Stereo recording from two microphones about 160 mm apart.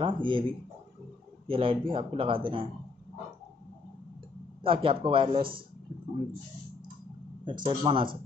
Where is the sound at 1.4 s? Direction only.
35° right (ahead or behind).